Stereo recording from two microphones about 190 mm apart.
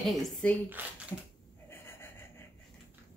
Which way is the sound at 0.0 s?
5° left (ahead or behind).